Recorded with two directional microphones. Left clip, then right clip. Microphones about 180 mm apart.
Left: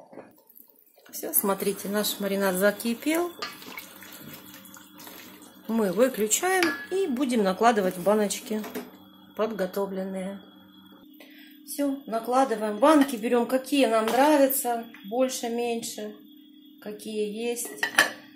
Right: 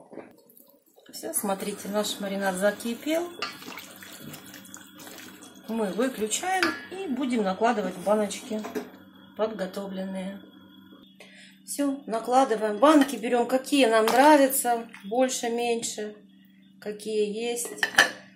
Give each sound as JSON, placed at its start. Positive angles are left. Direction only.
{"t": 1.2, "sound": "a woman's voice", "side_deg": 40}
{"t": 5.8, "sound": "a woman's voice", "side_deg": 50}
{"t": 9.4, "sound": "speech", "side_deg": 35}
{"t": 11.7, "sound": "a woman's voice", "side_deg": -10}